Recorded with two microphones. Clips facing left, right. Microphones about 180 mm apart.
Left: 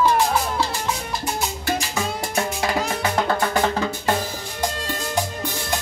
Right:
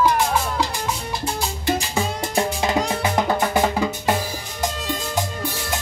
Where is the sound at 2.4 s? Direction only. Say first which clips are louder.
Right 3 dB; 20° right (ahead or behind).